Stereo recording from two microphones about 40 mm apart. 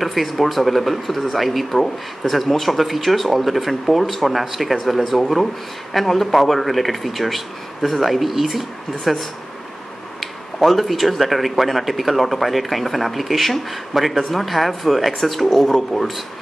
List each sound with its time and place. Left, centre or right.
0.0 s speech: centre
10.2 s speech: centre